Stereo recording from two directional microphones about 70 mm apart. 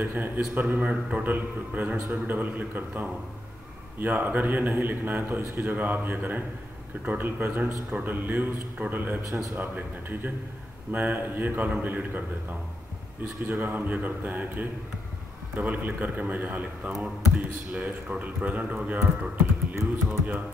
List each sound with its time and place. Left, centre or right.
0.0 s a man's voice: right
13.5 s a man's voice: right